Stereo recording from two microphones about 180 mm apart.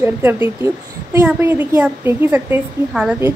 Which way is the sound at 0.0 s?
10° right (ahead or behind).